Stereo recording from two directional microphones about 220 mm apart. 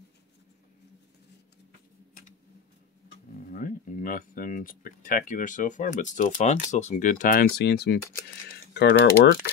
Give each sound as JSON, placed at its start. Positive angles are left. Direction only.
{"t": 3.5, "sound": "speech", "side_deg": 40}